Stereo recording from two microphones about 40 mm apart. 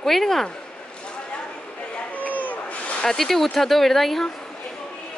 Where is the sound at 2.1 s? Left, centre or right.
Left.